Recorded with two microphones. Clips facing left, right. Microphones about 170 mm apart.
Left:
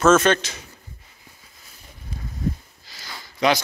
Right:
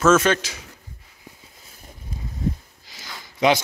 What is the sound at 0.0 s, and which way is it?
Speech, 10° right (ahead or behind).